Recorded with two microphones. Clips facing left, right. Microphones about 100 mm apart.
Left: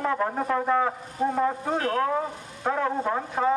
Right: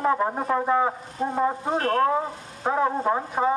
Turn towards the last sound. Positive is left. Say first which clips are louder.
# right 2 dB
turn(degrees=-15)  # may be behind; listen again after turning